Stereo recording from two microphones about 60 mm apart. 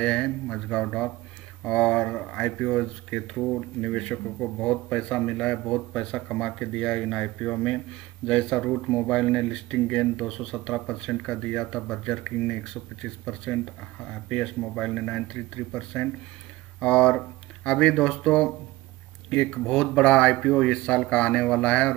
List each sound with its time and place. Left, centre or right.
0.0 s speech: centre
16.8 s speech: centre